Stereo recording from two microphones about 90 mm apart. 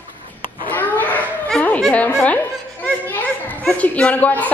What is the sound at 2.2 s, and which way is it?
Children playing, 15° left (ahead or behind).